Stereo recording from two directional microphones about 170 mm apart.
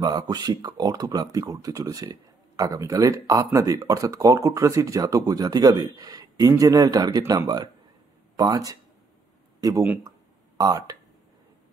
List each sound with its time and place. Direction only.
0.0 s speech: 25° right (ahead or behind)